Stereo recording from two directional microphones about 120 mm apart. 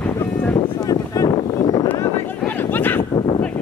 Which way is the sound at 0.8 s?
30° left (ahead or behind).